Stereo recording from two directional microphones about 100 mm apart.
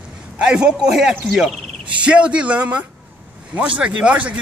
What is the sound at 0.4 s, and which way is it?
A man's voice, 10° right (ahead or behind).